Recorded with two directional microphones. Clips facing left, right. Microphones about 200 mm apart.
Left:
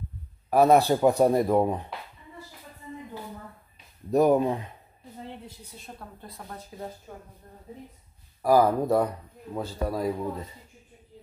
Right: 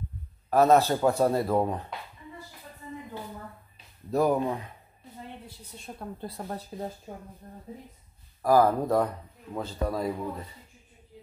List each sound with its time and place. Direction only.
0.5 s speech: 15° left (ahead or behind)
4.1 s speech: 20° left (ahead or behind)
5.9 s speech: 10° right (ahead or behind)
6.2 s speech: 35° right (ahead or behind)
8.4 s speech: 10° left (ahead or behind)